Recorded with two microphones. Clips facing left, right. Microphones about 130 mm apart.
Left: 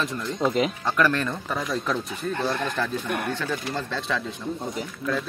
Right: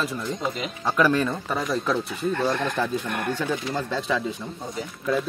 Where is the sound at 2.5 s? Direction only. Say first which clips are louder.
Right 2 dB; 15° right (ahead or behind).